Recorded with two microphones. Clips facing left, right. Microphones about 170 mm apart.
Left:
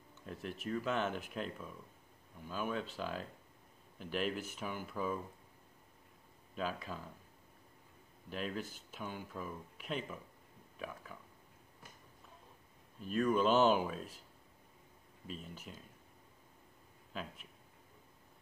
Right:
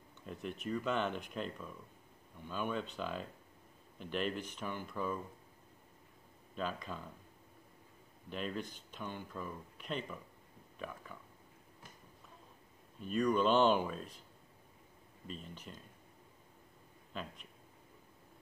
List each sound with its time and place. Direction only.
0.3 s speech: centre (ahead or behind)
6.5 s speech: 5° left (ahead or behind)
8.3 s speech: 5° left (ahead or behind)
13.0 s speech: centre (ahead or behind)
15.2 s speech: 5° left (ahead or behind)
17.1 s speech: 5° left (ahead or behind)